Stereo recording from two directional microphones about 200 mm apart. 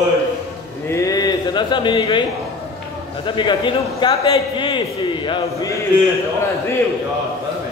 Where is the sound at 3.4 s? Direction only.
25° left (ahead or behind).